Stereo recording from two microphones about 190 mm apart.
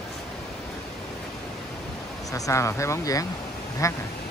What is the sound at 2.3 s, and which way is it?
Speech, 15° left (ahead or behind).